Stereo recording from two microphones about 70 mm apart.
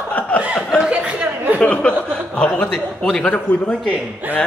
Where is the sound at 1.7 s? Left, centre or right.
Centre.